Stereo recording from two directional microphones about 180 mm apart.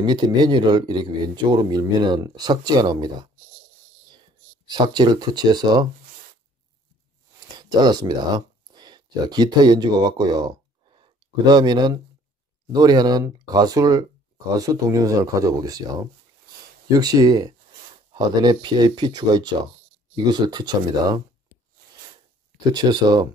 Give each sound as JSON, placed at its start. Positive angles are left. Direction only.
{"t": 0.0, "sound": "a man's voice", "side_deg": -25}
{"t": 4.6, "sound": "a man's voice", "side_deg": -25}
{"t": 7.3, "sound": "a man's voice", "side_deg": -25}
{"t": 22.7, "sound": "a man's voice", "side_deg": -25}